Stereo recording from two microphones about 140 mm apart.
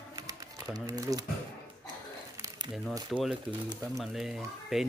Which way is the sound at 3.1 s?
Centre (ahead or behind).